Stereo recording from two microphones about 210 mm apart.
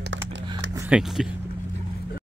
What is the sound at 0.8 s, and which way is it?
Speech, 5° right (ahead or behind).